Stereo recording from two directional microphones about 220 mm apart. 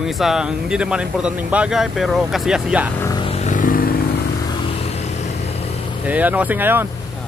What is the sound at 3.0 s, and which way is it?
Speech, 15° left (ahead or behind).